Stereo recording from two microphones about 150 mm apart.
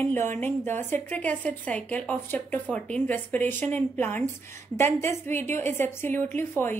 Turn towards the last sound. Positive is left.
turn(degrees=15)  # may be behind; listen again after turning